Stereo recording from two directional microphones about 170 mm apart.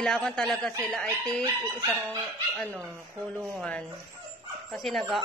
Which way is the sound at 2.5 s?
5° left (ahead or behind).